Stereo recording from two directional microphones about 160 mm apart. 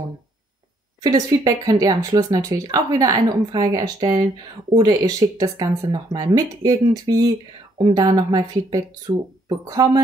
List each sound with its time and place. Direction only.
1.0 s speech: 25° right (ahead or behind)